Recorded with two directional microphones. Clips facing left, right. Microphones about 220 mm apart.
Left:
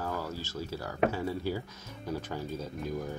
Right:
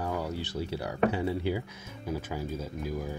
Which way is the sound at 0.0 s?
20° right (ahead or behind).